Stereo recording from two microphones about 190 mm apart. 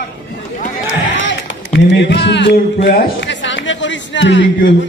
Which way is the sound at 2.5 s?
50° left (ahead or behind).